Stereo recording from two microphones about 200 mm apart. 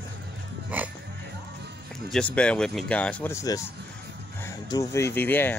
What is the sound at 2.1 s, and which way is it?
Speech, 5° left (ahead or behind).